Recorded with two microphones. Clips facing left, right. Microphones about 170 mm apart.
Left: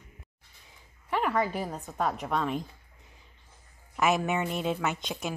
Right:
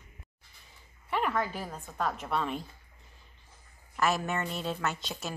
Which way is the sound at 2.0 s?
5° left (ahead or behind).